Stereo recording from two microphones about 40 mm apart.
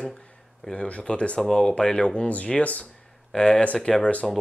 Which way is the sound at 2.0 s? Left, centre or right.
Left.